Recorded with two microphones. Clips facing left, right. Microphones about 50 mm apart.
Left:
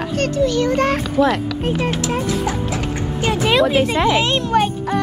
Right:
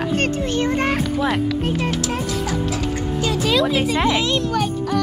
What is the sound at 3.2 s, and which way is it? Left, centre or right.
A child's voice, left.